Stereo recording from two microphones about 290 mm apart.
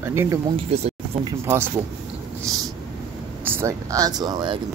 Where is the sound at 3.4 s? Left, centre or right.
Centre.